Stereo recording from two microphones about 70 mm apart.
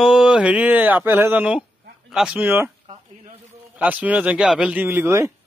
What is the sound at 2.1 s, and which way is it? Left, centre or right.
Speech, centre.